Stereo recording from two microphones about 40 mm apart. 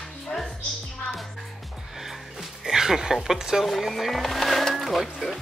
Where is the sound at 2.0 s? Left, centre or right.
Centre.